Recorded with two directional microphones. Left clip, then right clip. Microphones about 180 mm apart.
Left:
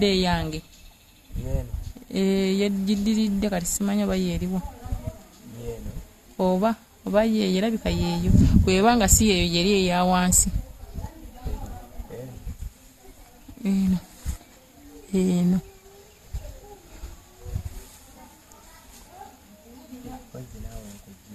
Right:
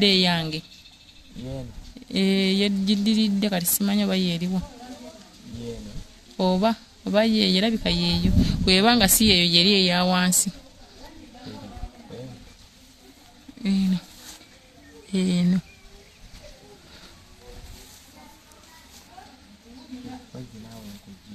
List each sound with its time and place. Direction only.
0.0 s speech: centre (ahead or behind)
2.0 s speech: centre (ahead or behind)
6.3 s speech: 5° left (ahead or behind)
13.6 s speech: 20° left (ahead or behind)
15.1 s speech: 15° left (ahead or behind)